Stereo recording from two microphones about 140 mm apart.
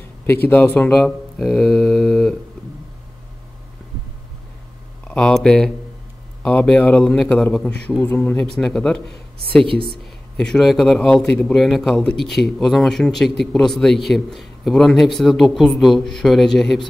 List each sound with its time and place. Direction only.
0.3 s speech: 15° left (ahead or behind)
5.0 s a man's voice: 5° left (ahead or behind)
9.7 s speech: 40° right (ahead or behind)
10.3 s a man's voice: 5° left (ahead or behind)